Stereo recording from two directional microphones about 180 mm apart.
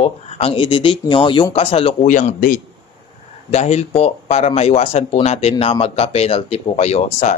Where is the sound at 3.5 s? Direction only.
35° left (ahead or behind).